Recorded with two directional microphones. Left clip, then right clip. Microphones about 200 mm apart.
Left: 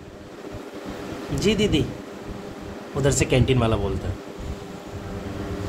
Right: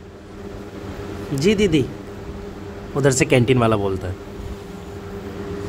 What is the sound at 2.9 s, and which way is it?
Speech, 25° right (ahead or behind).